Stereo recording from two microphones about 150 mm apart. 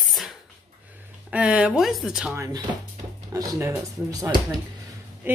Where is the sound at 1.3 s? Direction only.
5° right (ahead or behind).